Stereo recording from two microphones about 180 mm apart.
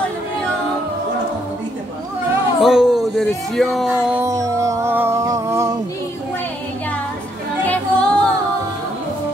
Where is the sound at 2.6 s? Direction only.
Centre (ahead or behind).